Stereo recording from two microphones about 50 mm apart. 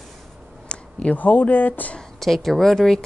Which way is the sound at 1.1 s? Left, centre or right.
Left.